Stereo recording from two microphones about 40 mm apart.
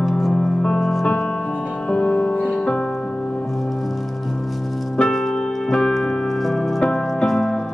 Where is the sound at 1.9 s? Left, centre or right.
Left.